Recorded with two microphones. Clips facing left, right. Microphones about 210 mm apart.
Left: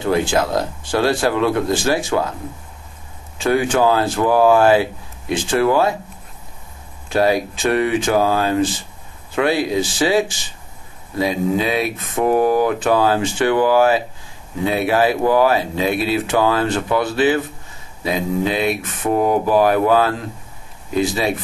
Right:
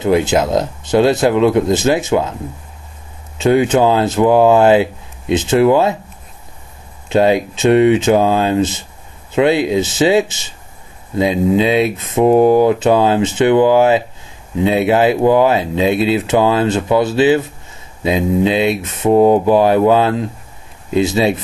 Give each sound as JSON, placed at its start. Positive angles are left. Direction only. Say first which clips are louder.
{"t": 0.0, "sound": "speech", "louder": "right 4 dB", "side_deg": -20}
{"t": 3.3, "sound": "speech", "louder": "right 5 dB", "side_deg": -20}
{"t": 7.1, "sound": "speech", "louder": "right 4 dB", "side_deg": -20}